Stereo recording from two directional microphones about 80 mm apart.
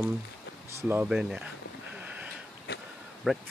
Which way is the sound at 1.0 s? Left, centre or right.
Centre.